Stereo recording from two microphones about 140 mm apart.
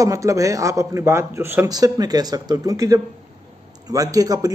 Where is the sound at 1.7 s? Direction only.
25° right (ahead or behind).